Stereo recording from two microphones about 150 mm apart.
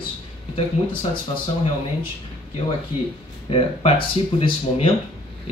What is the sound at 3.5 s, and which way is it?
Speech, 35° left (ahead or behind).